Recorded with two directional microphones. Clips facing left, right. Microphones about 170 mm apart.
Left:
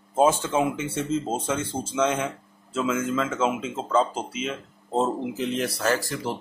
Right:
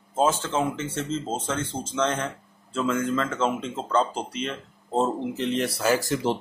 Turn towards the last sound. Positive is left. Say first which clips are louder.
# right 5 dB
turn(degrees=-20)  # may be behind; listen again after turning